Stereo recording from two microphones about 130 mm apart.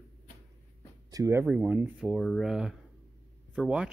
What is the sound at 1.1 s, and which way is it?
Speech, 25° right (ahead or behind).